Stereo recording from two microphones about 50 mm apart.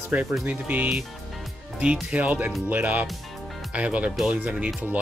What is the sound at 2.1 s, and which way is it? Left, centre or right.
Speech, right.